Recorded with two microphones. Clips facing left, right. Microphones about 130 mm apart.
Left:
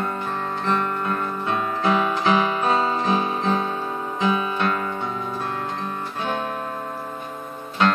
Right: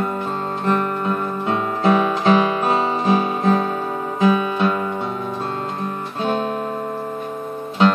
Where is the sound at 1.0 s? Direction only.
20° right (ahead or behind).